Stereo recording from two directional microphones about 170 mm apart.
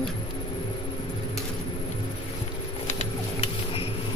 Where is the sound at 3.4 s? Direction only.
35° left (ahead or behind).